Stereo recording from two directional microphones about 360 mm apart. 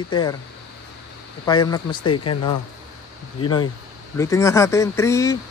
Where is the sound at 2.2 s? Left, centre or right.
Left.